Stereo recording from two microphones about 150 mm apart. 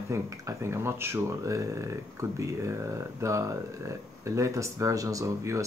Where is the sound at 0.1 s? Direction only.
20° right (ahead or behind).